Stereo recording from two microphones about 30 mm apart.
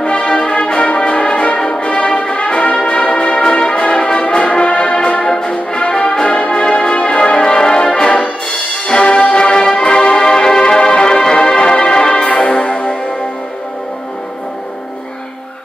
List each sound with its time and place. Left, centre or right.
0.0 s music: left
0.6 s brass instrument: left
1.8 s music: left
4.4 s brass instrument: left
5.2 s music: left
6.2 s music: left
6.5 s music: left
8.8 s music: left
9.3 s music: left